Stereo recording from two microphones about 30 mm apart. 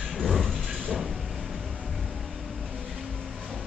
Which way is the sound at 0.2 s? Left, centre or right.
Centre.